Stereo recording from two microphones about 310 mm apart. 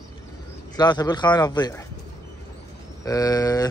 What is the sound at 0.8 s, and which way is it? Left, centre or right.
A man's voice, centre.